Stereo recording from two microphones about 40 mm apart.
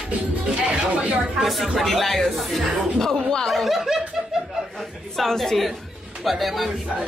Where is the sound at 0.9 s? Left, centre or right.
Right.